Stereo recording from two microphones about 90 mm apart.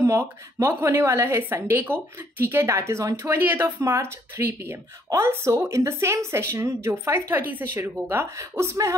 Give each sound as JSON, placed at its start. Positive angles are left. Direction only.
{"t": 0.0, "sound": "a woman's voice", "side_deg": -30}